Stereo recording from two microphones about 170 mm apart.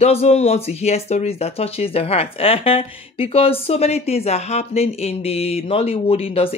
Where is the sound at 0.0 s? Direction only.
40° left (ahead or behind).